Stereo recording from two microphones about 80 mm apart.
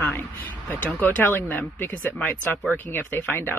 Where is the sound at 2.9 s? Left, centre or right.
Left.